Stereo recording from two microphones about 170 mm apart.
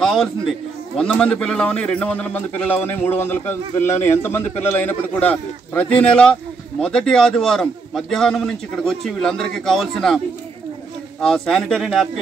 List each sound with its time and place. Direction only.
0.0 s a man's voice: 5° left (ahead or behind)